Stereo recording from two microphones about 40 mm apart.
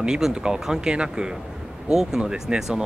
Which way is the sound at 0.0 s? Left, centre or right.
Centre.